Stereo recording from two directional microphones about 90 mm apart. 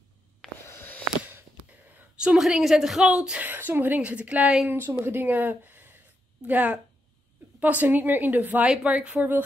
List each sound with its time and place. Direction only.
0.7 s a sound: 20° left (ahead or behind)
2.1 s a woman's voice: 5° right (ahead or behind)
3.4 s a woman's voice: 20° right (ahead or behind)